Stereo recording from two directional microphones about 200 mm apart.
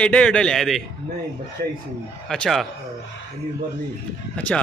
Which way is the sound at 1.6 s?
45° right (ahead or behind).